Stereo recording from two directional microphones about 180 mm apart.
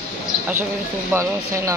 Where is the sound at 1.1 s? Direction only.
15° right (ahead or behind).